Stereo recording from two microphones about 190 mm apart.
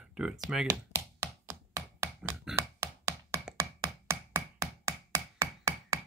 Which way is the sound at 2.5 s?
15° right (ahead or behind).